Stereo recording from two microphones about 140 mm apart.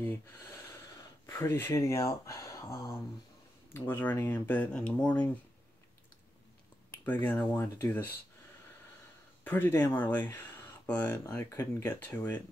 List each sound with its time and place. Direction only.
0.0 s speech: 15° left (ahead or behind)
7.1 s speech: 10° left (ahead or behind)
9.4 s speech: 15° left (ahead or behind)